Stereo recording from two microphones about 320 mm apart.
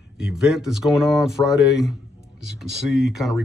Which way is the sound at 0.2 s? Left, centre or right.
Centre.